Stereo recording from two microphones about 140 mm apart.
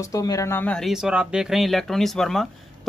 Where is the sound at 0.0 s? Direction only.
25° left (ahead or behind).